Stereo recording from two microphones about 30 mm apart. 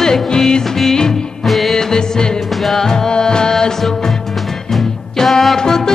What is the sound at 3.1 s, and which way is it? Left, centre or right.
Music, left.